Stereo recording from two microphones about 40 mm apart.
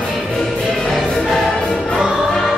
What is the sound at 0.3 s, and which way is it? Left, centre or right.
Music, centre.